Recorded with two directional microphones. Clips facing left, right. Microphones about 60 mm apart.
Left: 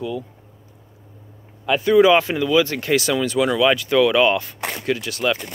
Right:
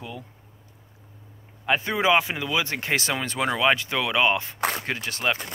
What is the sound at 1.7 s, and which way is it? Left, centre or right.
Speech, right.